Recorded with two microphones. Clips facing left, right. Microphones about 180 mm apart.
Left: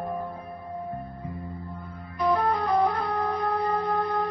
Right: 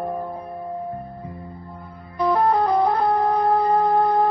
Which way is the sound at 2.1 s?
30° right (ahead or behind).